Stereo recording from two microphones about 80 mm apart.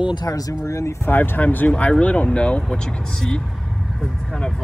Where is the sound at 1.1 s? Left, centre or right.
Left.